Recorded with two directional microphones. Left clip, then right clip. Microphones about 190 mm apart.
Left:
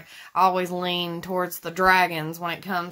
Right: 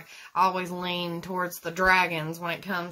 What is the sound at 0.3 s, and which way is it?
Speech, 35° left (ahead or behind).